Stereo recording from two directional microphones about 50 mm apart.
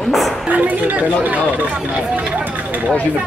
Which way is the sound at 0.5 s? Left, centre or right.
Right.